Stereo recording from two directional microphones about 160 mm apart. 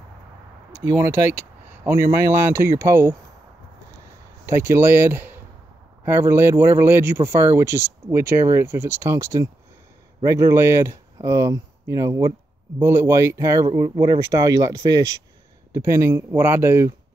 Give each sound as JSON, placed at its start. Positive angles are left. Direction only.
{"t": 0.7, "sound": "speech", "side_deg": -15}
{"t": 1.1, "sound": "speech", "side_deg": 50}
{"t": 1.9, "sound": "speech", "side_deg": -15}
{"t": 4.5, "sound": "speech", "side_deg": -15}